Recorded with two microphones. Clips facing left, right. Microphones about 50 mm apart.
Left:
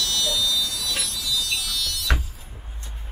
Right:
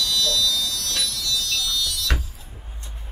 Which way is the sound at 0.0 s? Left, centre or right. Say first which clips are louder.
Right 2 dB; left.